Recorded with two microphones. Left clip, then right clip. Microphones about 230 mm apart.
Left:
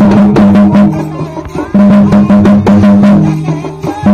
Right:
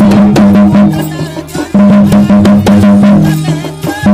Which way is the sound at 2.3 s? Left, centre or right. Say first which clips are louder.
Even; right.